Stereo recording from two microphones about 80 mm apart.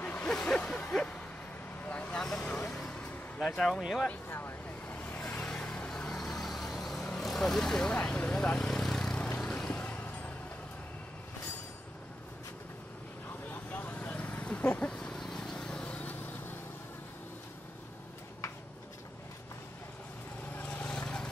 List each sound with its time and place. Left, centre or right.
0.0 s a sound: centre
0.3 s a sound: centre
1.9 s vehicle: centre
4.1 s vehicle: left
5.4 s vehicle: centre
7.2 s speech: centre
9.4 s vehicle: centre
9.8 s vehicle: left
13.5 s vehicle: left
20.5 s vehicle: centre